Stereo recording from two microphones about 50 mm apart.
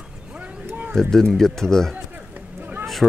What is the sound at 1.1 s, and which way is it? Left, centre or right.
Speech, centre.